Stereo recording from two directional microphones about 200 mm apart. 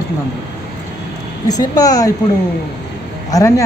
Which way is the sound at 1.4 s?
20° left (ahead or behind).